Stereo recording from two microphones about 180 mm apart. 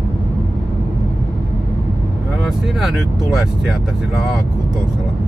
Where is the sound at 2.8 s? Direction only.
Centre (ahead or behind).